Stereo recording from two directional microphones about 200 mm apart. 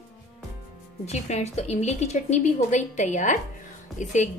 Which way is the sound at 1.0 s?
35° left (ahead or behind).